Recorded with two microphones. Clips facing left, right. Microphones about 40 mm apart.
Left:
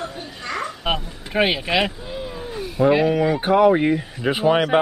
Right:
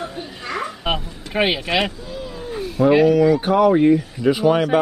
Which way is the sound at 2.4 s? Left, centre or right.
Centre.